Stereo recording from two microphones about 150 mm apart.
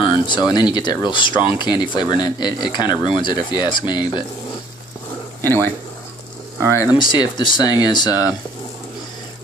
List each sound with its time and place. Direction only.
0.0 s speech: 30° left (ahead or behind)
5.4 s speech: 15° left (ahead or behind)
7.1 s speech: 30° left (ahead or behind)